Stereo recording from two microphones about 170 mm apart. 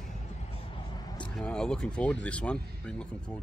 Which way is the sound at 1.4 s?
5° left (ahead or behind).